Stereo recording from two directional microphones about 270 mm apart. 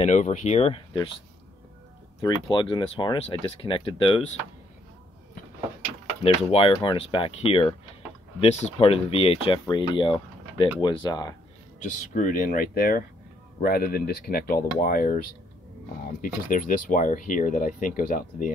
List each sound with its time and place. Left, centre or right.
0.0 s speech: left
2.5 s speech: centre
6.2 s speech: left
12.0 s speech: left
16.2 s speech: left